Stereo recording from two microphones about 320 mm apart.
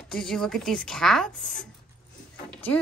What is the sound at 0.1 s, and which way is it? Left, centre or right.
Speech, centre.